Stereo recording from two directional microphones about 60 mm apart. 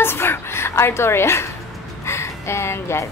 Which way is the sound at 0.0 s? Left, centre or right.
Left.